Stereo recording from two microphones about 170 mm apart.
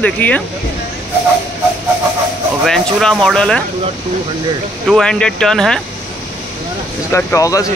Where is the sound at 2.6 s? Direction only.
Centre (ahead or behind).